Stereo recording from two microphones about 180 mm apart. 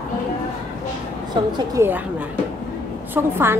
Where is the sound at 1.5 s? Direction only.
15° right (ahead or behind).